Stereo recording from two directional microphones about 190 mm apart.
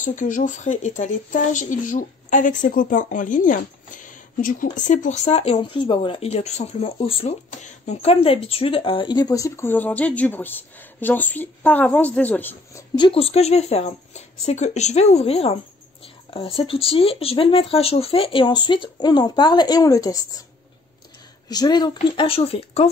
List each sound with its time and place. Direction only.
0.0 s speech: 40° left (ahead or behind); by 12.8 s 10° left (ahead or behind)
12.9 s speech: 25° left (ahead or behind)
21.5 s speech: 20° left (ahead or behind)